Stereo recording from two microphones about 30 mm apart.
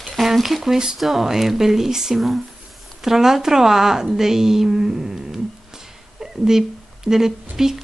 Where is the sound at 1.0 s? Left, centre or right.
Centre.